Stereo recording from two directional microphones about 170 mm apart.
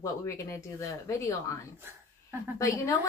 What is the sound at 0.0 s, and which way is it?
Speech, 15° left (ahead or behind).